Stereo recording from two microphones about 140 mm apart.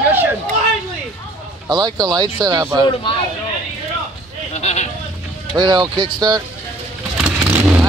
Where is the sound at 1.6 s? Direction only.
30° right (ahead or behind).